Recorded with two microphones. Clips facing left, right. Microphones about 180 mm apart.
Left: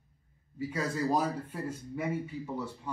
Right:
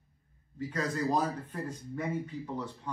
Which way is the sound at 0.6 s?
10° left (ahead or behind).